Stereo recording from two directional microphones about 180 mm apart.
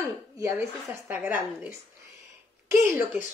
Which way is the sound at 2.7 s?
15° right (ahead or behind).